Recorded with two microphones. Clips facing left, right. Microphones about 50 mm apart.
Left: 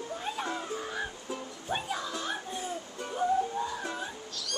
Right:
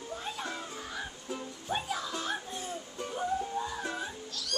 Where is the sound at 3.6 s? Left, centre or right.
Centre.